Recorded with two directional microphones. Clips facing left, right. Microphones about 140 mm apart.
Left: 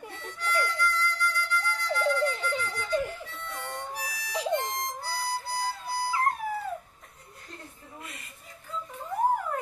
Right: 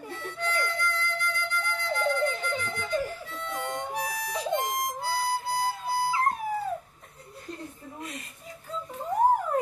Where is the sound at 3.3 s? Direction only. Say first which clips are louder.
Right 5 dB; 55° right (ahead or behind).